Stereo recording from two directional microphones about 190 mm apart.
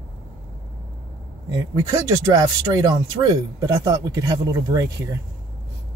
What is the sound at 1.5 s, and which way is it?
Speech, 20° right (ahead or behind).